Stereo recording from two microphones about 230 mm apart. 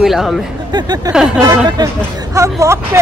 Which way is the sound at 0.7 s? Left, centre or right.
Centre.